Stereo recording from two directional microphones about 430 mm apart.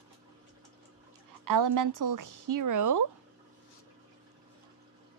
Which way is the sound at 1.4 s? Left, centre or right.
Right.